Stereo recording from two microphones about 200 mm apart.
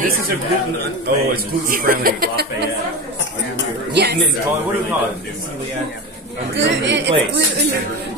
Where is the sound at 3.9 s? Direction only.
60° right (ahead or behind).